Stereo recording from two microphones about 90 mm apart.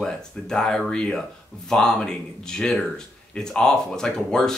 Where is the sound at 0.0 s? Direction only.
5° left (ahead or behind).